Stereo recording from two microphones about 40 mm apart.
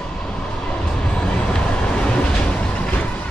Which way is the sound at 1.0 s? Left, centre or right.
Left.